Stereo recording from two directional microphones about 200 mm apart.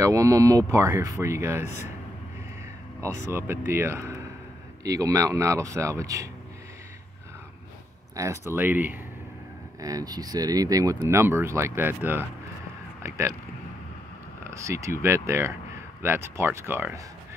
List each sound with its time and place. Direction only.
0.0 s speech: 15° right (ahead or behind)
3.3 s speech: 10° right (ahead or behind)
8.2 s speech: 15° right (ahead or behind)
14.4 s speech: 15° right (ahead or behind)